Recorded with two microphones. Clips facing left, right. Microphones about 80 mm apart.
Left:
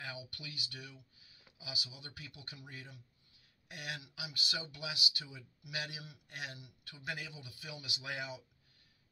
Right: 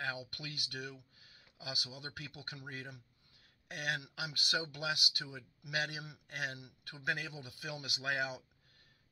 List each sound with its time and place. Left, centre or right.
0.0 s speech: right